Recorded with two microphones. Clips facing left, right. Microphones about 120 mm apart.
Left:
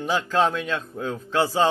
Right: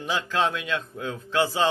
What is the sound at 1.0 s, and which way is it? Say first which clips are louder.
Speech: left 2 dB; 30° left (ahead or behind).